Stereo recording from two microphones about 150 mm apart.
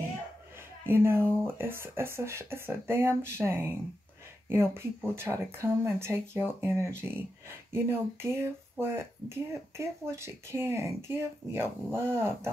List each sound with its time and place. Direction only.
0.8 s speech: 15° right (ahead or behind)